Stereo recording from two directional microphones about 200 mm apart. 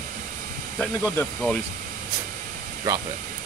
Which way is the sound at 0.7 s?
5° left (ahead or behind).